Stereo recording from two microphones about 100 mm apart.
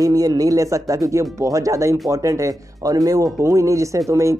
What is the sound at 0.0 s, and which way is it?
Speech, 40° right (ahead or behind).